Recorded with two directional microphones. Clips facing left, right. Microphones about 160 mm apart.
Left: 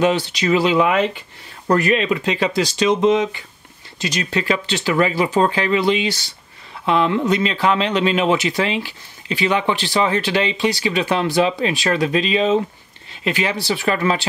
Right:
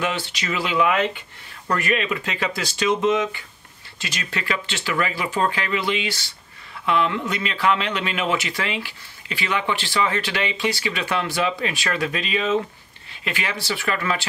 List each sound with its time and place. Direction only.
0.0 s speech: 30° left (ahead or behind)